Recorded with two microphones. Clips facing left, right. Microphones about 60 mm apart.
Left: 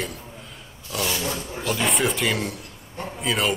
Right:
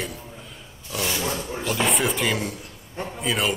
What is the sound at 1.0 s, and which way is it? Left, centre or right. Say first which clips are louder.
Roaring cats: right 1 dB; centre.